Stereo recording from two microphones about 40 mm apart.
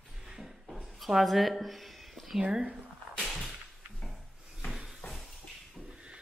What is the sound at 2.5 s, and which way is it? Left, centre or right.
Speech, centre.